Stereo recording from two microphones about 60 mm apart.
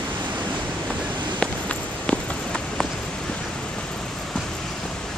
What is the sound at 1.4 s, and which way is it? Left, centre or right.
Walk, centre.